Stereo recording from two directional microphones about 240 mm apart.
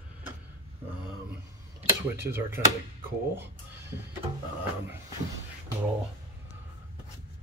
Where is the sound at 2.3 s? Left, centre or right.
Centre.